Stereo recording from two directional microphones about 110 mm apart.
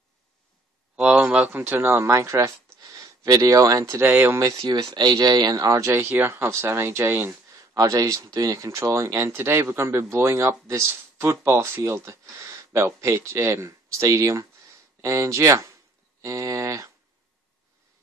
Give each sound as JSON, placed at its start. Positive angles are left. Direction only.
{"t": 0.9, "sound": "speech", "side_deg": -10}
{"t": 4.4, "sound": "speech", "side_deg": -35}
{"t": 16.2, "sound": "a sound", "side_deg": -30}